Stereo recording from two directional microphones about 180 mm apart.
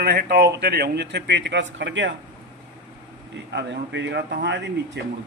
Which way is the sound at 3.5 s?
75° right (ahead or behind).